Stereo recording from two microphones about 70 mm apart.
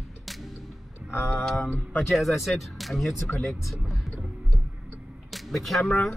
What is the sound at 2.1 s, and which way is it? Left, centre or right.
Speech, centre.